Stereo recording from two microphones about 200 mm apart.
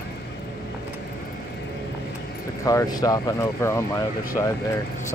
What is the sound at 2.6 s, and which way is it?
Speech, 20° left (ahead or behind).